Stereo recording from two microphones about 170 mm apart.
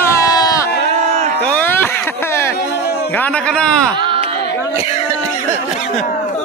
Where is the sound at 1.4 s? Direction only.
10° left (ahead or behind).